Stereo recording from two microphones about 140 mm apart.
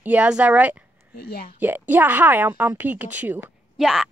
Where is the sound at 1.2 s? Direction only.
90° left.